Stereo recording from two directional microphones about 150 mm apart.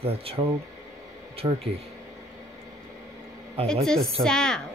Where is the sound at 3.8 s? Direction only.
Centre (ahead or behind).